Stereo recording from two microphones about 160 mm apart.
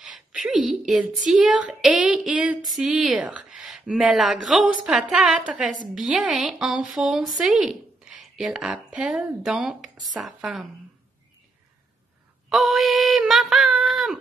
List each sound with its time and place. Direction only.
0.0 s a woman's voice: centre (ahead or behind)
12.4 s a woman's voice: centre (ahead or behind)